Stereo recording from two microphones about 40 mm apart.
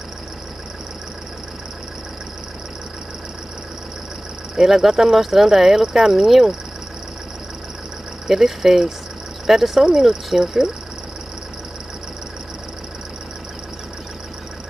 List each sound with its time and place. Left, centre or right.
4.6 s speech: centre
8.3 s speech: centre